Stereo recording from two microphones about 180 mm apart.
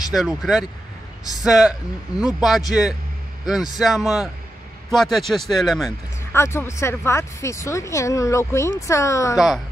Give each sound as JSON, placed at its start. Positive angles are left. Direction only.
{"t": 0.4, "sound": "a man's voice", "side_deg": 0}
{"t": 6.3, "sound": "speech", "side_deg": 15}